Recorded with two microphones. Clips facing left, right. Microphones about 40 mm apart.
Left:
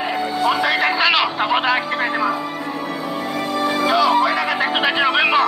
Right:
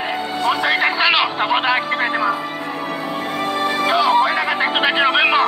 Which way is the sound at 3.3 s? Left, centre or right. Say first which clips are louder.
Even; right.